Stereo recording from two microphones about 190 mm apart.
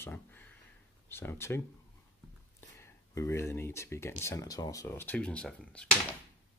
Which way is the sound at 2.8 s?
15° left (ahead or behind).